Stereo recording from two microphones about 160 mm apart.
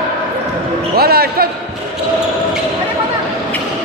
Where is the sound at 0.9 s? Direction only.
75° right (ahead or behind).